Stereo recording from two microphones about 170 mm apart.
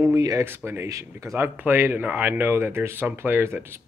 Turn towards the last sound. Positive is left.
turn(degrees=-15)  # may be behind; listen again after turning